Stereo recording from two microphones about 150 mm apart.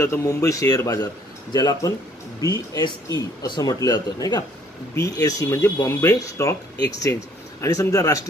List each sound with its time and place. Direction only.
0.0 s speech: 20° left (ahead or behind)